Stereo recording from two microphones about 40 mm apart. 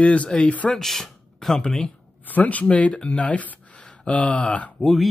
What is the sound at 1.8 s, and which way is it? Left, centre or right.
Speech, left.